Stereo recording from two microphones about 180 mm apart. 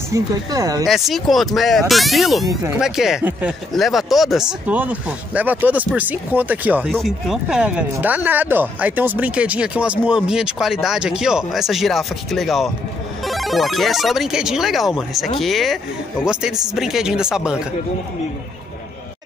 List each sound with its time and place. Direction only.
0.1 s speech: 20° right (ahead or behind)
0.8 s speech: centre (ahead or behind)